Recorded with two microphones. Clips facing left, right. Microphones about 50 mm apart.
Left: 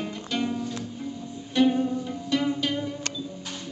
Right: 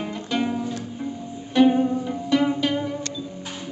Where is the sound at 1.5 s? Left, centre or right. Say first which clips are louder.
Right 5 dB; centre.